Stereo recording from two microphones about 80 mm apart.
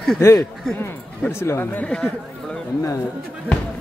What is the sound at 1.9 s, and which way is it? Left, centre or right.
Speech, centre.